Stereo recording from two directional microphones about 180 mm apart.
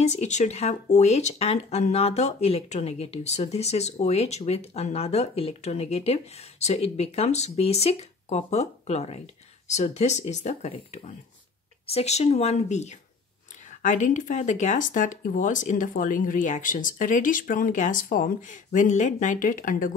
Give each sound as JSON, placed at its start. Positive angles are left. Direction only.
{"t": 0.0, "sound": "speech", "side_deg": 40}